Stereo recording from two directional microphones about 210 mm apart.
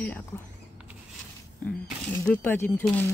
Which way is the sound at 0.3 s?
10° left (ahead or behind).